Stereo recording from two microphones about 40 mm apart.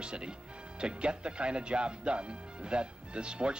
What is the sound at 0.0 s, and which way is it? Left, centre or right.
Speech, right.